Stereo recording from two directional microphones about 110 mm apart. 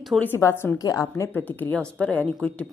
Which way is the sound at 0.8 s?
30° left (ahead or behind).